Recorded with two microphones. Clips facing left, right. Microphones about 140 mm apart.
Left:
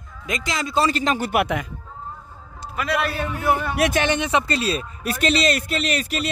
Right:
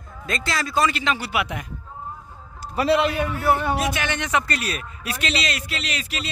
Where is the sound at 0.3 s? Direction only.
15° left (ahead or behind).